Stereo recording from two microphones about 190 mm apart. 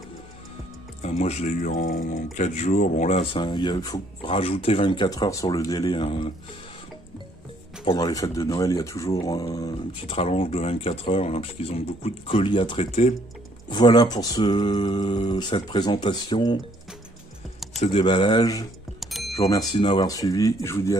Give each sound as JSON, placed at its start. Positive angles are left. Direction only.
{"t": 1.0, "sound": "speech", "side_deg": 35}
{"t": 7.8, "sound": "speech", "side_deg": 25}
{"t": 13.7, "sound": "speech", "side_deg": 20}
{"t": 17.7, "sound": "speech", "side_deg": 30}
{"t": 18.9, "sound": "music", "side_deg": 0}
{"t": 19.3, "sound": "speech", "side_deg": 20}